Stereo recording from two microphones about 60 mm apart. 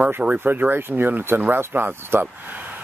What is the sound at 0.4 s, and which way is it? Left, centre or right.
Speech, right.